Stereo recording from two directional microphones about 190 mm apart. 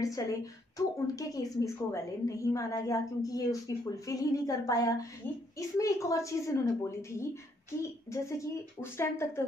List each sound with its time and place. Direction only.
0.0 s a woman's voice: 15° left (ahead or behind)